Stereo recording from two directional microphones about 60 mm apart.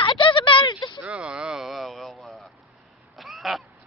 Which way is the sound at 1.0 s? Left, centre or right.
Centre.